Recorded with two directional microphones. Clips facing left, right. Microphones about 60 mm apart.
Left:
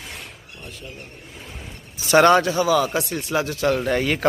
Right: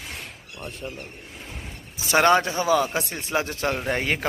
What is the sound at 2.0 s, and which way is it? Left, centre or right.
A man's voice, right.